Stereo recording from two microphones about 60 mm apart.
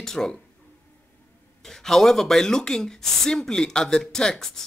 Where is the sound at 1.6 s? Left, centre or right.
Centre.